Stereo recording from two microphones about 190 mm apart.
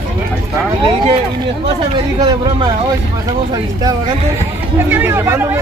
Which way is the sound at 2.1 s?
25° right (ahead or behind).